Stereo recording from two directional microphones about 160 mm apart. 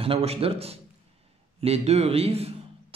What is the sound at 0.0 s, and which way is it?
A man's voice, 40° right (ahead or behind).